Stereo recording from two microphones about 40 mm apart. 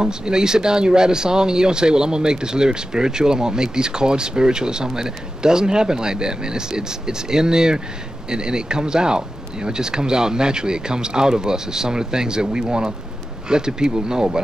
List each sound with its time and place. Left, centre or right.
0.0 s speech: centre